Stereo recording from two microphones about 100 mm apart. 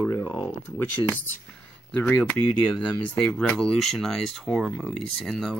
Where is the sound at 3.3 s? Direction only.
5° left (ahead or behind).